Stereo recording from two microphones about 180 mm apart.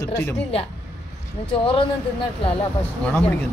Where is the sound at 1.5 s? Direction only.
30° left (ahead or behind).